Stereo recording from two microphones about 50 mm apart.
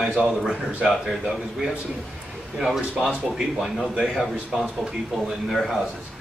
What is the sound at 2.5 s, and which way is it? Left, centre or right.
A man's voice, centre.